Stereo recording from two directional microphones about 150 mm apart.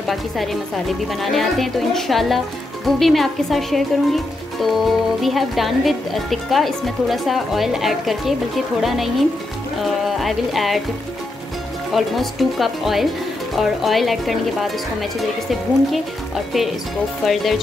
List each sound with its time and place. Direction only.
0.0 s speech: centre (ahead or behind)
11.9 s speech: centre (ahead or behind)
17.2 s speech: centre (ahead or behind)